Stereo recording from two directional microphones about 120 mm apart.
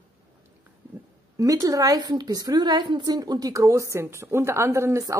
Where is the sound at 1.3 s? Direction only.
30° right (ahead or behind).